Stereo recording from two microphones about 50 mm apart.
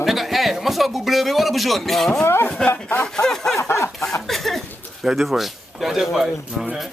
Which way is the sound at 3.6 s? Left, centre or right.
Left.